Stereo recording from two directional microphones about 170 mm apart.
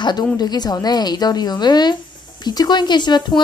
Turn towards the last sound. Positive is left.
turn(degrees=25)  # may be behind; listen again after turning